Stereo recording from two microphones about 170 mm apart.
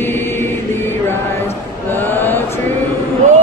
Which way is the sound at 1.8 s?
10° left (ahead or behind).